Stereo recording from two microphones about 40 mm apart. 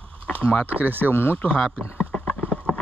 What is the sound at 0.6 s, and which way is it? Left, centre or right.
Speech, right.